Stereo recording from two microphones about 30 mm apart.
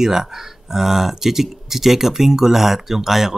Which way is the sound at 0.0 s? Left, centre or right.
Centre.